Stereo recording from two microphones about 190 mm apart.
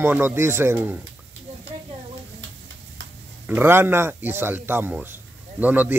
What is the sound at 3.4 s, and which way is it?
Speech, 10° right (ahead or behind).